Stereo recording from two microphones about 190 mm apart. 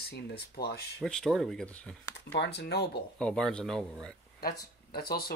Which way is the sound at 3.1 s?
5° left (ahead or behind).